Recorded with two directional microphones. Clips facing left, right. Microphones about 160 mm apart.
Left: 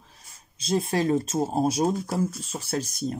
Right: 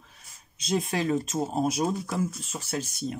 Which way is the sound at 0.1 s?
35° left (ahead or behind).